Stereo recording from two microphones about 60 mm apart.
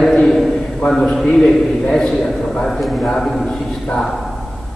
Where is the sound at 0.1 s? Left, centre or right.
Centre.